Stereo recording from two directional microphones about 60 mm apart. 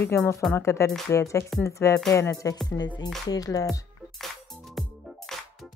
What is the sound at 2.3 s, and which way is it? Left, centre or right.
Speech, left.